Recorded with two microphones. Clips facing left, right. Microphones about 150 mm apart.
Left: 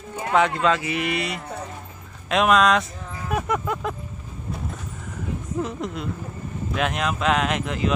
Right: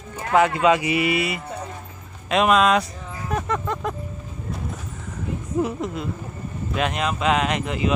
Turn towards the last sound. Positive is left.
turn(degrees=0)  # may be behind; listen again after turning